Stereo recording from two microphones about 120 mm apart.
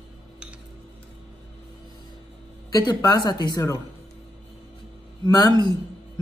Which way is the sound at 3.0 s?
35° left (ahead or behind).